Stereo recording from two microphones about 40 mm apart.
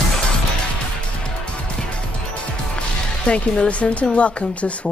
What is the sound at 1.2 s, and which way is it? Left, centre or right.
Music, left.